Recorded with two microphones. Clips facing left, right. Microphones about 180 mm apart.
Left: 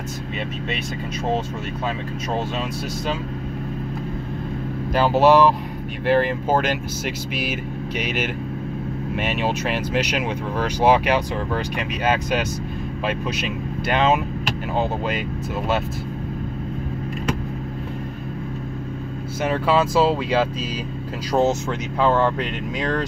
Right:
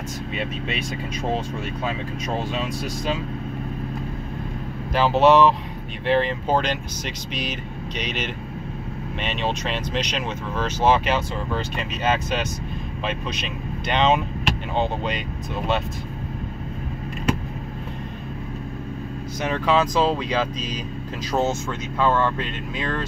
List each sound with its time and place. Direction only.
4.9 s speech: centre (ahead or behind)
8.0 s speech: 5° left (ahead or behind)
19.4 s speech: 10° left (ahead or behind)